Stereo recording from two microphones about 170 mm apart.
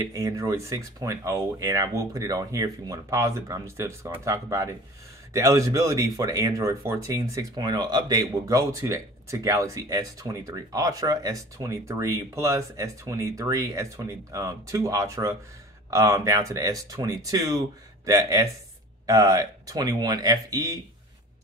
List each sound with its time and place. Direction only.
0.0 s speech: 20° right (ahead or behind)